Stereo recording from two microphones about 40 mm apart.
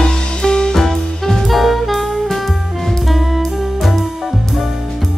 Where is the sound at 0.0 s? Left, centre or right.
Centre.